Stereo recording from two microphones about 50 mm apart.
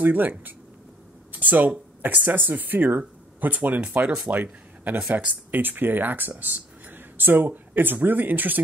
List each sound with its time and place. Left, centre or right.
0.0 s speech: right